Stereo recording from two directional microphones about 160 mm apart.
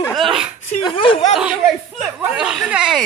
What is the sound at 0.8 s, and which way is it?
Speech, 35° left (ahead or behind).